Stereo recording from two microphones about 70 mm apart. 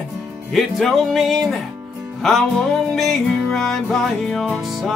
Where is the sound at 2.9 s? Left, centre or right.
Centre.